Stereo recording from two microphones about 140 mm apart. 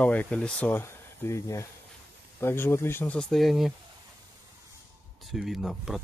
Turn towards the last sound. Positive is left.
turn(degrees=0)  # may be behind; listen again after turning